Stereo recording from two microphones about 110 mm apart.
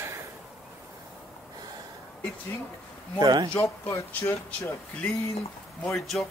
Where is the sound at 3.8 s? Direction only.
25° left (ahead or behind).